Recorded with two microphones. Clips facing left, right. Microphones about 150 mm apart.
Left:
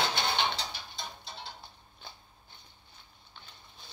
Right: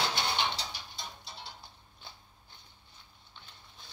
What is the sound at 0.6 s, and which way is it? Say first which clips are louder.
Music: left 2 dB; 25° left (ahead or behind).